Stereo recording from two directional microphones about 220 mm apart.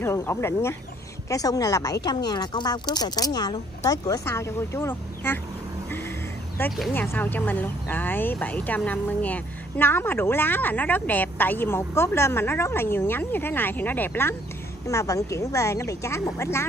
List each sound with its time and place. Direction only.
0.0 s speech: 10° left (ahead or behind)
6.6 s speech: 10° left (ahead or behind)